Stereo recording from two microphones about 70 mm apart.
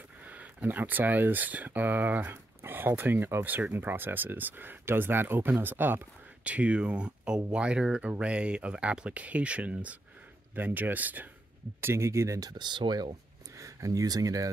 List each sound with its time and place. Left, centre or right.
0.2 s speech: right
6.4 s speech: centre
11.8 s speech: right
12.4 s speech: right
13.6 s speech: right